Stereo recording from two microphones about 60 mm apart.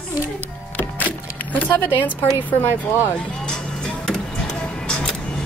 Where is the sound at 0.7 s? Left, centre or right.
Left.